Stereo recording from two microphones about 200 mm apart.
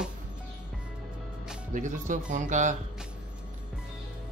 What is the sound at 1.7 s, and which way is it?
Speech, 40° right (ahead or behind).